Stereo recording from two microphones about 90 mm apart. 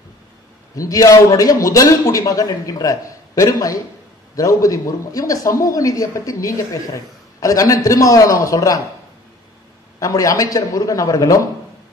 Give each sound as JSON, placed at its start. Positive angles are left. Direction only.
{"t": 0.7, "sound": "a man's voice", "side_deg": 40}
{"t": 9.9, "sound": "a man's voice", "side_deg": 40}